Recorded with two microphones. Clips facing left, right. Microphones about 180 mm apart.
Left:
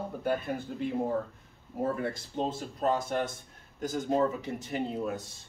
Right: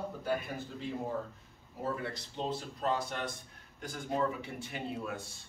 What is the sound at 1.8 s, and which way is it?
A man's voice, 50° left (ahead or behind).